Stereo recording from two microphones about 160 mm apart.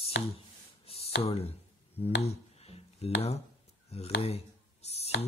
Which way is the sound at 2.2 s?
40° left (ahead or behind).